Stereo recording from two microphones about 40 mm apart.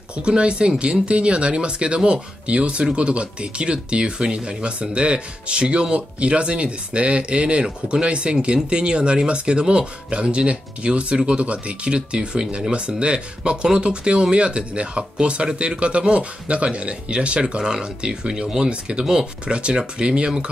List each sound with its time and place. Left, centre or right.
0.2 s speech: right